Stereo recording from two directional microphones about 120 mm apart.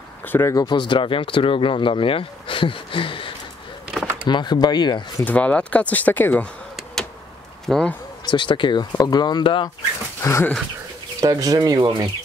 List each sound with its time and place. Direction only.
0.3 s speech: 25° left (ahead or behind)
0.7 s speech: 40° left (ahead or behind)
5.2 s speech: 10° left (ahead or behind)
7.6 s speech: 5° left (ahead or behind)
8.3 s speech: 40° left (ahead or behind)
10.2 s speech: 20° left (ahead or behind)
11.1 s speech: 30° right (ahead or behind)